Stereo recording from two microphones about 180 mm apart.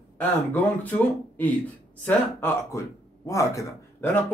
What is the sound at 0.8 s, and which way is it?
A man's voice, 10° left (ahead or behind).